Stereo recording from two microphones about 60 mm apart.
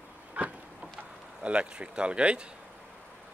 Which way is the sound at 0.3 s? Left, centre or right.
Right.